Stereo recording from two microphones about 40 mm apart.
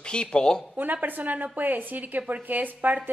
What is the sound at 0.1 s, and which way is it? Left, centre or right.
Speech, left.